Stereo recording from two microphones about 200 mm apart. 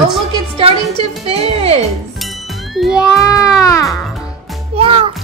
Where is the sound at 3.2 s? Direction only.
15° left (ahead or behind).